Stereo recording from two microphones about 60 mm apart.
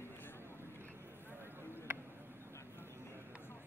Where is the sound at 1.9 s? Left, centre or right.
Right.